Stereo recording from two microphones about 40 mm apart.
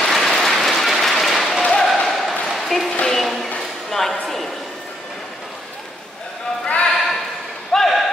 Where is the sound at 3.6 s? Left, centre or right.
Centre.